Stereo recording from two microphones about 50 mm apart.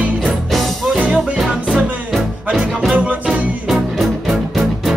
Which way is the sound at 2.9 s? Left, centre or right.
Right.